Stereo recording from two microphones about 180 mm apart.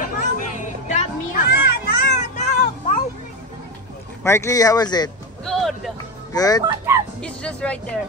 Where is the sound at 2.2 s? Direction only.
40° left (ahead or behind).